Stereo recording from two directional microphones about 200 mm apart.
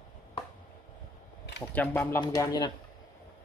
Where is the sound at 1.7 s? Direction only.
10° left (ahead or behind).